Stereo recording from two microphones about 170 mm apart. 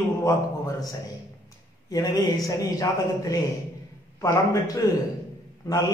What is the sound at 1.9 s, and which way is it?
A man's voice, 20° left (ahead or behind).